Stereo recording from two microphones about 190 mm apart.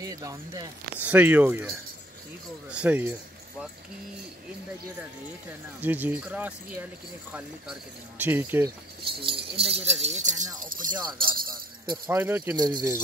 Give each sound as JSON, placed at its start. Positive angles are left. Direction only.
{"t": 0.0, "sound": "speech", "side_deg": -20}
{"t": 5.8, "sound": "speech", "side_deg": -10}
{"t": 8.2, "sound": "speech", "side_deg": -10}
{"t": 9.2, "sound": "speech", "side_deg": -30}
{"t": 11.9, "sound": "speech", "side_deg": -15}
{"t": 12.5, "sound": "speech", "side_deg": -20}